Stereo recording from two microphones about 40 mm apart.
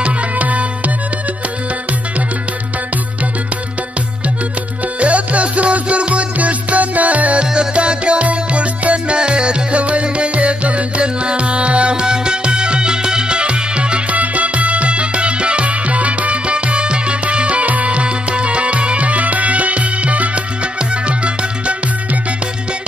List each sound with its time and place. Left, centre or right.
0.0 s music: right
5.0 s music: right
7.4 s music: right